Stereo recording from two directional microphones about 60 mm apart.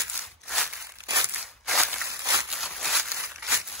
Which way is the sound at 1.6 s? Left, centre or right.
Centre.